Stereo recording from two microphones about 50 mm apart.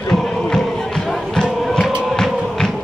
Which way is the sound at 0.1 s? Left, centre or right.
Centre.